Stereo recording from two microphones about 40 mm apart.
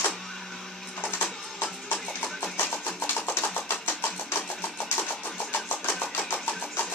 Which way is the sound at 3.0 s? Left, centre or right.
Left.